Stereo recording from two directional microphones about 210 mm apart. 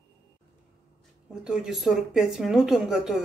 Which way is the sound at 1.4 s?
Centre (ahead or behind).